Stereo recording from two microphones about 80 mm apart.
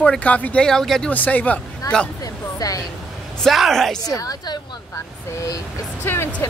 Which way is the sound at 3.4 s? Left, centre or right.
Centre.